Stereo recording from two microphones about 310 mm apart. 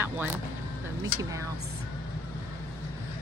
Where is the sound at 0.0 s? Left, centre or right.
Centre.